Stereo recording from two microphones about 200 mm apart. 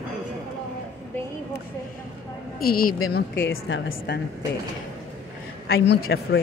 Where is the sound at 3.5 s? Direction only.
75° left (ahead or behind).